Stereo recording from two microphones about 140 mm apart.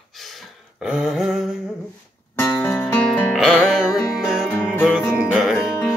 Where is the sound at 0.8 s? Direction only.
5° right (ahead or behind).